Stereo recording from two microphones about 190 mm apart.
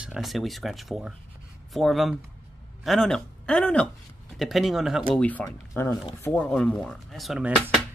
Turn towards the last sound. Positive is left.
turn(degrees=0)  # may be behind; listen again after turning